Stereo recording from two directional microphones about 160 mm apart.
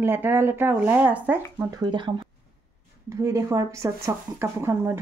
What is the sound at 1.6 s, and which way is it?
Speech, 20° right (ahead or behind).